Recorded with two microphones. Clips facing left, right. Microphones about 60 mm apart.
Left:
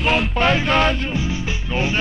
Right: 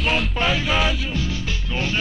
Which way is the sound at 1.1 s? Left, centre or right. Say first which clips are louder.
Left 3 dB; centre.